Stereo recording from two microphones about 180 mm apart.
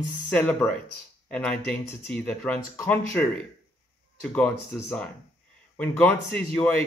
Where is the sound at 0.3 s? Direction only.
5° left (ahead or behind).